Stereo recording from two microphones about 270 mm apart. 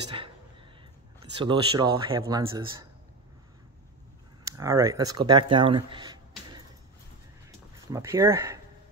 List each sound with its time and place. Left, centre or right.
1.4 s speech: centre
4.5 s speech: centre
7.9 s speech: centre